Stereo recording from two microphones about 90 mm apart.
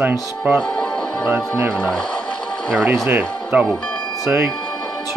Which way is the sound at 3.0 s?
20° right (ahead or behind).